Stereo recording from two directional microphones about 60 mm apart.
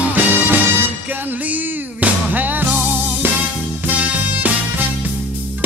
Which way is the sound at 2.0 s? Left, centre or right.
Right.